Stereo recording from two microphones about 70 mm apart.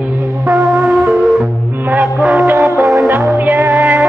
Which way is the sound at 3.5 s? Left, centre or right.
Right.